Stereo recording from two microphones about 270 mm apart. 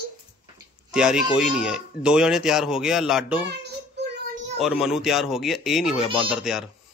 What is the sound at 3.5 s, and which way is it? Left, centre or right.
Child singing, right.